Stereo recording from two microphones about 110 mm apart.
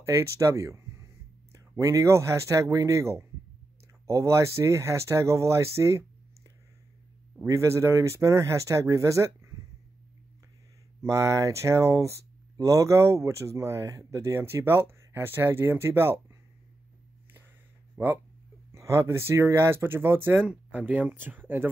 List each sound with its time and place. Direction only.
0.0 s speech: 25° right (ahead or behind)
7.4 s speech: 25° right (ahead or behind)
11.0 s speech: 25° right (ahead or behind)
18.0 s speech: 20° right (ahead or behind)